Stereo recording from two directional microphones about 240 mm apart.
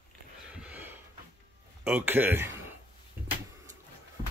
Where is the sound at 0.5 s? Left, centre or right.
Centre.